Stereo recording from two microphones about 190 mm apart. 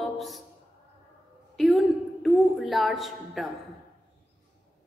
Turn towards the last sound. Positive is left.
turn(degrees=0)  # may be behind; listen again after turning